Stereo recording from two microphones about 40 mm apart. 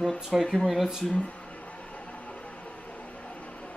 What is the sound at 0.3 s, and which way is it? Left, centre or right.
Speech, centre.